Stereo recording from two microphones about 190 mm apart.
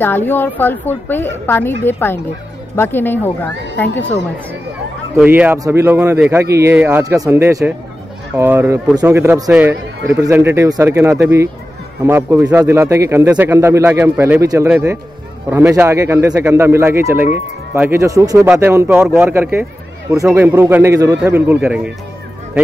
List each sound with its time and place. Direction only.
0.0 s a woman's voice: 10° left (ahead or behind)
5.1 s a man's voice: 10° right (ahead or behind)